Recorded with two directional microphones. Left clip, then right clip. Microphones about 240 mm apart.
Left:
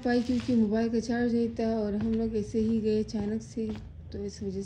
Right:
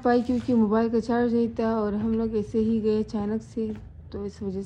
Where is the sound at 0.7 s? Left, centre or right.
Centre.